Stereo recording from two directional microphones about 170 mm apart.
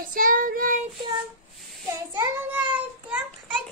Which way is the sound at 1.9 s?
15° right (ahead or behind).